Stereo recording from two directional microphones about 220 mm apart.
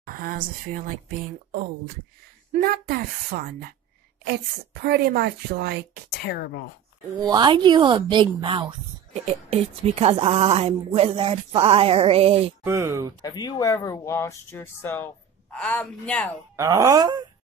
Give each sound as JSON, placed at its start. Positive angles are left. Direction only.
{"t": 0.0, "sound": "speech", "side_deg": -40}
{"t": 2.6, "sound": "a woman's voice", "side_deg": -45}
{"t": 4.8, "sound": "a woman's voice", "side_deg": -45}
{"t": 6.2, "sound": "speech", "side_deg": 45}
{"t": 7.2, "sound": "speech", "side_deg": -20}
{"t": 12.6, "sound": "speech", "side_deg": -10}
{"t": 13.2, "sound": "a man's voice", "side_deg": 15}
{"t": 16.5, "sound": "speech", "side_deg": -15}